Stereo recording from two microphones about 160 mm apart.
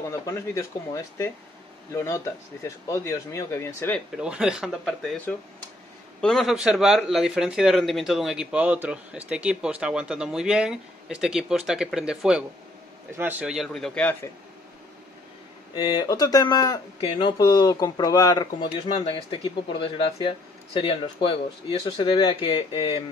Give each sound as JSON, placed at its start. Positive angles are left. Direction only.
{"t": 0.1, "sound": "speech", "side_deg": 20}
{"t": 4.2, "sound": "speech", "side_deg": -5}
{"t": 15.7, "sound": "speech", "side_deg": 25}